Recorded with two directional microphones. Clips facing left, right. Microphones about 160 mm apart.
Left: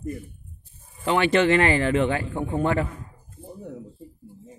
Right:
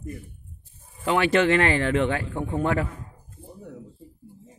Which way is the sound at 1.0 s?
Centre (ahead or behind).